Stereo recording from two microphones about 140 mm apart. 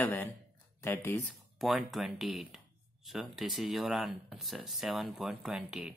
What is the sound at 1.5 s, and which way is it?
Speech, centre (ahead or behind).